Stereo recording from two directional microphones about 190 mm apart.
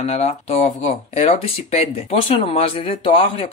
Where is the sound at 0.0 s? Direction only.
35° left (ahead or behind).